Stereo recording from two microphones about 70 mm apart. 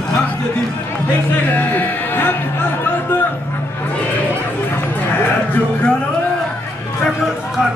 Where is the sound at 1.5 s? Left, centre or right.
Left.